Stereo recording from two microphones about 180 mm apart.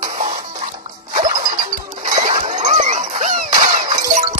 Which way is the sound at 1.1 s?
45° right (ahead or behind).